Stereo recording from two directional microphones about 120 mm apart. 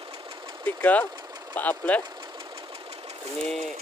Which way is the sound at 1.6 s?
15° left (ahead or behind).